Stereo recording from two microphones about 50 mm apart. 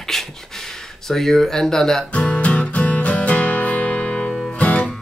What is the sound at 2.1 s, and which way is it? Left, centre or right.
Music, left.